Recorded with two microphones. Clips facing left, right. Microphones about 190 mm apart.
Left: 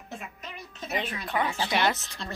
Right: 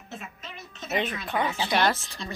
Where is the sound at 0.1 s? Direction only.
15° left (ahead or behind).